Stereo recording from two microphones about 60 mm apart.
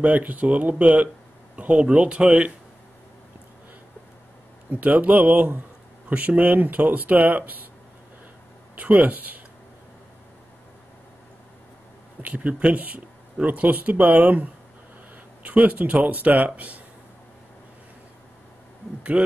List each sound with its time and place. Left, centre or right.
0.0 s speech: right
4.6 s speech: right
8.7 s speech: right
12.2 s speech: right
19.1 s speech: centre